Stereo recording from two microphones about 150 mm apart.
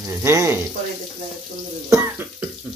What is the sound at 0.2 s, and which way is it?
Speech, 15° right (ahead or behind).